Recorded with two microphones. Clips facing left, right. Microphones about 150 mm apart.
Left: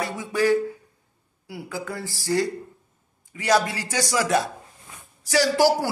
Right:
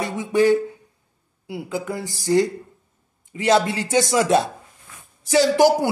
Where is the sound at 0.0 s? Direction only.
20° right (ahead or behind).